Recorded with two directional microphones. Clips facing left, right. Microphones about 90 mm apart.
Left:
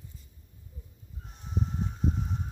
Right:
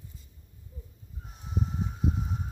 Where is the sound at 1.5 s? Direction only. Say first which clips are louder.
Even; 5° right (ahead or behind).